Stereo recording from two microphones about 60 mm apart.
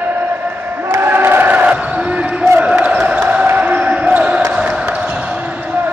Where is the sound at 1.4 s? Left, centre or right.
Right.